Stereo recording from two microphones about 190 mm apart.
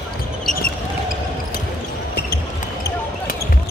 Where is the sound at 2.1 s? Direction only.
55° left (ahead or behind).